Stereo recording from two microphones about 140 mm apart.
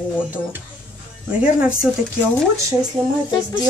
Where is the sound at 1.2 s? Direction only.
5° right (ahead or behind).